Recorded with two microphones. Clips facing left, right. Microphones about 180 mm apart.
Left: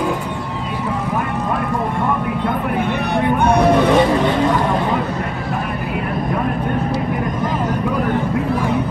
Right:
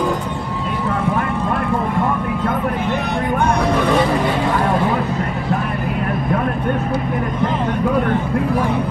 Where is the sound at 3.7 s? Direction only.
20° left (ahead or behind).